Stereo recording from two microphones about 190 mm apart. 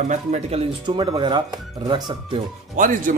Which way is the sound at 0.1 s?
35° right (ahead or behind).